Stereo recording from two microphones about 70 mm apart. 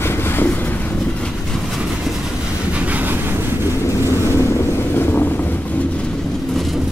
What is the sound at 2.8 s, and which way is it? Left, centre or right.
Vehicle, right.